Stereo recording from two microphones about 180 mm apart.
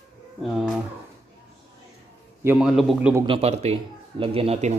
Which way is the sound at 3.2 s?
35° right (ahead or behind).